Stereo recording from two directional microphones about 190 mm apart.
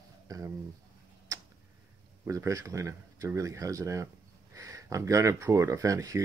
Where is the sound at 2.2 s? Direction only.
15° right (ahead or behind).